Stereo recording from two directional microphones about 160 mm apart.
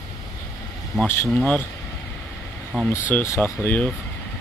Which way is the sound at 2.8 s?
10° left (ahead or behind).